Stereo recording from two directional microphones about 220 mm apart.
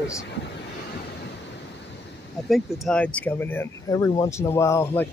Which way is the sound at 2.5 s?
5° left (ahead or behind).